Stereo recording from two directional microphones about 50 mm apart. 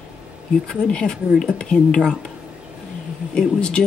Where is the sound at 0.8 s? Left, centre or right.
Centre.